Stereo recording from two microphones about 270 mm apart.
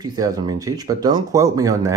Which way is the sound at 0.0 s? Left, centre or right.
Centre.